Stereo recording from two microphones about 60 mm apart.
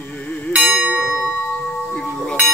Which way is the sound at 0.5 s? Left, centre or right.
Right.